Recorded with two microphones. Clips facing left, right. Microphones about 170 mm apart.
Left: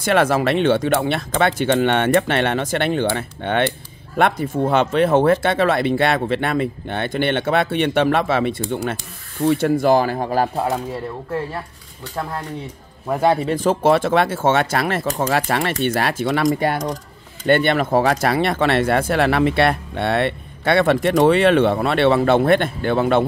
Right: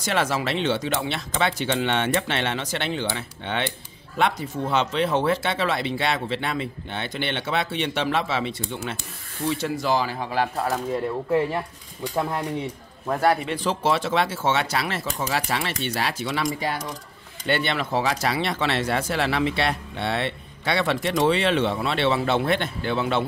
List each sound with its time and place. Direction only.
0.0 s speech: 55° left (ahead or behind)
10.5 s speech: 25° left (ahead or behind)
11.5 s speech: 15° right (ahead or behind)
13.4 s speech: 45° left (ahead or behind)